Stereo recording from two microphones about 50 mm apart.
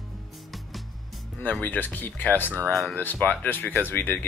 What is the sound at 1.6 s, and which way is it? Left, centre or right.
Speech, left.